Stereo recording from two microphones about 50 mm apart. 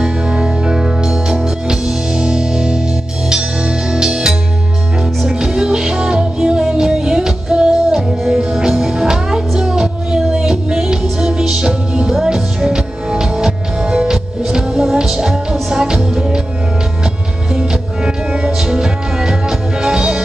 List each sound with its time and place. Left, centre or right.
0.0 s music: centre
17.6 s music: centre